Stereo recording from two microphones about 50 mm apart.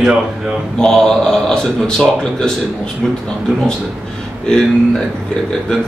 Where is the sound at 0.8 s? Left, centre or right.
Centre.